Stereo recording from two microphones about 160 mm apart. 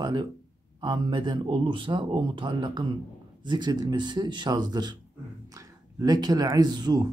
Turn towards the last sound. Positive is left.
turn(degrees=-25)  # may be behind; listen again after turning